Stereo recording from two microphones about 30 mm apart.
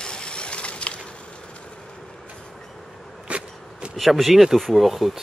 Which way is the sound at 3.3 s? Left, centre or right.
Right.